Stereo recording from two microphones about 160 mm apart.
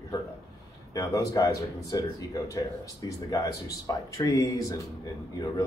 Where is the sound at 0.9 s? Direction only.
20° left (ahead or behind).